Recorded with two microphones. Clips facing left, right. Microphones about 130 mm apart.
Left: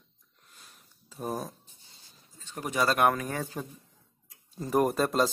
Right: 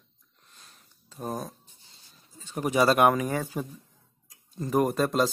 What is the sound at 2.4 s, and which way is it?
Speech, 10° right (ahead or behind).